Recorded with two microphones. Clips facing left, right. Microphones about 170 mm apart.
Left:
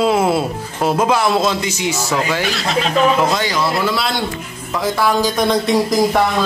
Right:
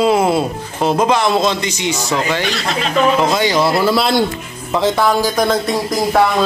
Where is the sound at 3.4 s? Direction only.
30° right (ahead or behind).